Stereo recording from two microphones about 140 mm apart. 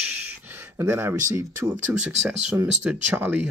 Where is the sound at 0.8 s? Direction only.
20° right (ahead or behind).